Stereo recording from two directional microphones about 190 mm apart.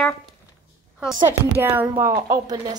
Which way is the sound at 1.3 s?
10° right (ahead or behind).